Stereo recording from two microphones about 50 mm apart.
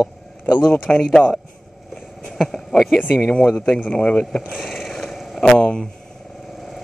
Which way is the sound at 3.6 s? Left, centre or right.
Left.